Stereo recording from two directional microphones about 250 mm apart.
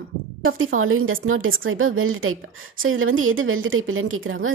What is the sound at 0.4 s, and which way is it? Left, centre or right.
A woman's voice, right.